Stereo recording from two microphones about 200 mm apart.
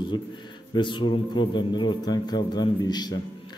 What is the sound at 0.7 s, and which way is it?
A man's voice, 25° left (ahead or behind).